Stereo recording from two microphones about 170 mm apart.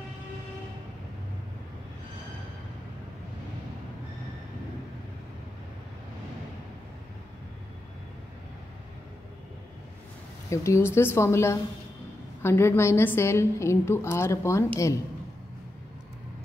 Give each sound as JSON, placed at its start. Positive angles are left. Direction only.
{"t": 10.5, "sound": "a woman's voice", "side_deg": 15}